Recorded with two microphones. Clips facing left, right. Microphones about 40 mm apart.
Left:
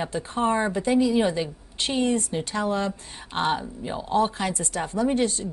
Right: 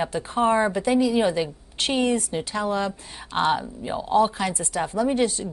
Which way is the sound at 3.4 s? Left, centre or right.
Centre.